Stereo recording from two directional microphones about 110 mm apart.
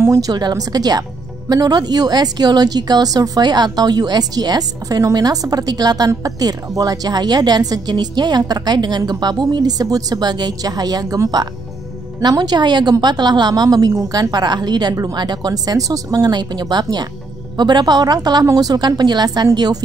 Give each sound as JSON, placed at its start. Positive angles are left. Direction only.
{"t": 0.0, "sound": "a woman's voice", "side_deg": -30}